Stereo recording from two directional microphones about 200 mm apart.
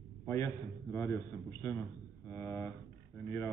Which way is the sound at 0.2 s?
10° left (ahead or behind).